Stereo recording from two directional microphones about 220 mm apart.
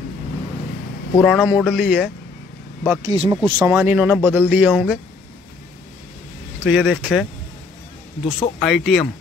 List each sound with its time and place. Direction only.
1.2 s speech: centre (ahead or behind)
3.0 s a man's voice: 20° right (ahead or behind); by 5.0 s centre (ahead or behind)
6.6 s speech: 5° right (ahead or behind)
8.2 s speech: 25° left (ahead or behind)
8.5 s speech: centre (ahead or behind)